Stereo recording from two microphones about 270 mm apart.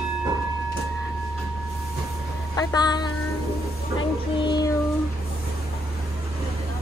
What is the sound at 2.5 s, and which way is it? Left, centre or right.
Speech, centre.